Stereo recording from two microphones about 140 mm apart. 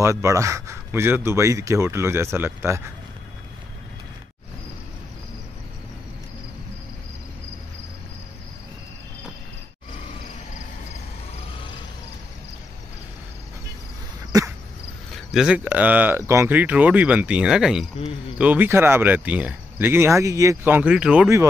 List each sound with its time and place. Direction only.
0.0 s speech: 20° right (ahead or behind)
14.3 s a sound: 25° right (ahead or behind)
15.1 s speech: 5° right (ahead or behind)